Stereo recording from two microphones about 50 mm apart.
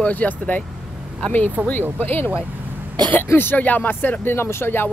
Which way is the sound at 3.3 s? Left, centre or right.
Left.